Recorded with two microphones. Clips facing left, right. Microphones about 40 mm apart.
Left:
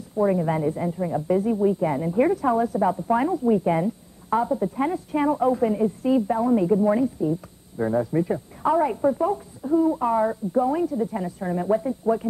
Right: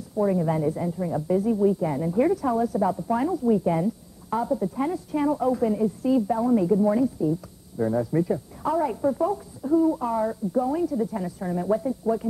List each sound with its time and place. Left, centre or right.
0.2 s a woman's voice: left
1.2 s a woman's voice: left